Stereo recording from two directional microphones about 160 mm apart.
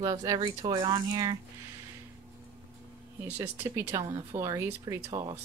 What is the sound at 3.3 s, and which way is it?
A woman's voice, 15° right (ahead or behind).